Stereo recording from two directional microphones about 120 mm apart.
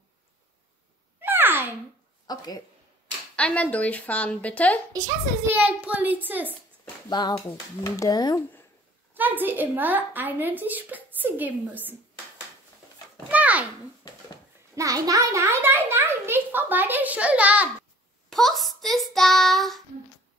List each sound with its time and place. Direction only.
1.2 s babbling: 15° right (ahead or behind)
2.2 s speech: 35° left (ahead or behind)
3.3 s a woman's voice: 10° left (ahead or behind)
5.5 s a woman's voice: 15° right (ahead or behind)
7.1 s speech: 35° left (ahead or behind)
7.3 s speech: 25° left (ahead or behind)
9.1 s a woman's voice: 15° right (ahead or behind)
13.3 s a sound: 10° right (ahead or behind)
14.8 s a child's voice: 30° right (ahead or behind); by 17.6 s 10° right (ahead or behind)
18.3 s child singing: centre (ahead or behind)